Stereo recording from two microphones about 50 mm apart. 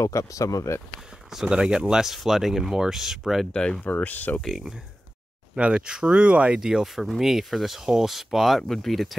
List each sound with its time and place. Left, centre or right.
0.0 s speech: left
1.3 s speech: centre
3.8 s speech: left
5.6 s speech: centre
6.6 s speech: centre